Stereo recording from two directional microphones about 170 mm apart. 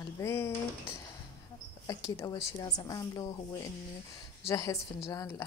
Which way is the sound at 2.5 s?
20° left (ahead or behind).